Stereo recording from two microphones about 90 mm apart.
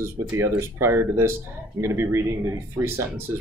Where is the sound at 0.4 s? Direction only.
30° right (ahead or behind).